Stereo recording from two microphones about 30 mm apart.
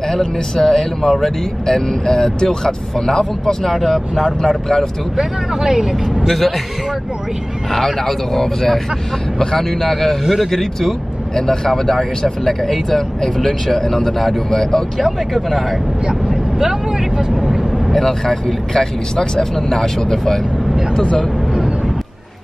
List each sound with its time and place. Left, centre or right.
0.1 s speech: centre
4.2 s speech: centre
5.1 s speech: right
6.2 s speech: centre
7.7 s speech: centre
10.2 s speech: centre
10.5 s speech: centre
15.0 s speech: centre
16.1 s speech: centre
17.9 s speech: centre
21.0 s speech: left